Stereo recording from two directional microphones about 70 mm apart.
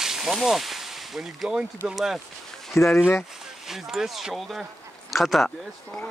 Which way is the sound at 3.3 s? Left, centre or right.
Centre.